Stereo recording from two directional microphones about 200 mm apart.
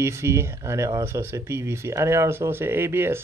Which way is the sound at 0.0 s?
15° right (ahead or behind).